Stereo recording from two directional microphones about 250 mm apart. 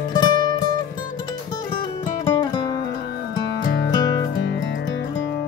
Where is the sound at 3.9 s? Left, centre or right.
Centre.